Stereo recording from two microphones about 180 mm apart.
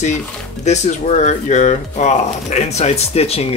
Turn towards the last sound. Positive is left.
turn(degrees=35)  # may be behind; listen again after turning